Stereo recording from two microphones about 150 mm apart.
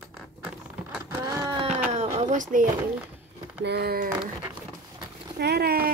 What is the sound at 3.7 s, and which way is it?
Speech, 90° right.